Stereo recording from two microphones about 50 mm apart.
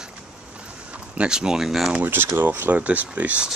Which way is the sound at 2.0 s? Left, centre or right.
Right.